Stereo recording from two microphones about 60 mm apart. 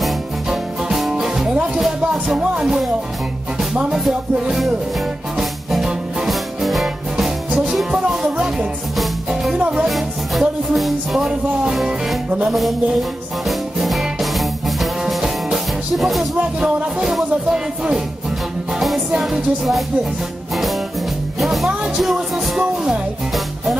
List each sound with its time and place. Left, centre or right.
0.0 s music: centre
5.4 s music: centre
12.3 s speech: right
13.5 s music: centre
16.3 s speech: centre
17.0 s music: centre
18.8 s music: centre
21.4 s music: centre